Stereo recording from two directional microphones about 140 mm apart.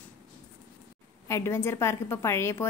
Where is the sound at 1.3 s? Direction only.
20° left (ahead or behind).